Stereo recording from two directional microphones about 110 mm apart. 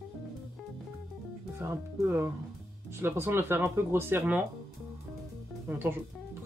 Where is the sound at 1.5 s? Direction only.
20° right (ahead or behind).